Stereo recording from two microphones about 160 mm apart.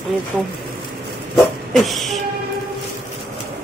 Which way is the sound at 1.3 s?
Centre (ahead or behind).